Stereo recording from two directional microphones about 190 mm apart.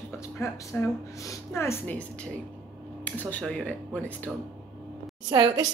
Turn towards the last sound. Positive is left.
turn(degrees=-20)  # may be behind; listen again after turning